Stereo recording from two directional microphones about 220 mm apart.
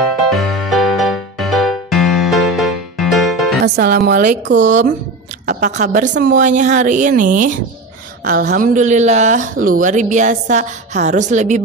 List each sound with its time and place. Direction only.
0.3 s music: centre (ahead or behind)
3.6 s a woman's voice: 45° right (ahead or behind)